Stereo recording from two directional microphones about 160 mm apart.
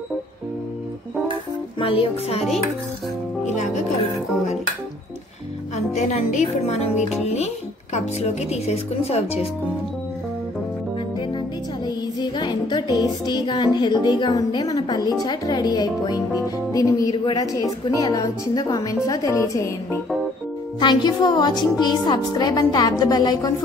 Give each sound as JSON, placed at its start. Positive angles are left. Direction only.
{"t": 1.8, "sound": "a woman's voice", "side_deg": 35}
{"t": 3.4, "sound": "music", "side_deg": 45}
{"t": 5.9, "sound": "a woman's voice", "side_deg": 45}
{"t": 7.0, "sound": "music", "side_deg": 0}
{"t": 7.2, "sound": "a woman's voice", "side_deg": 45}
{"t": 11.8, "sound": "music", "side_deg": 25}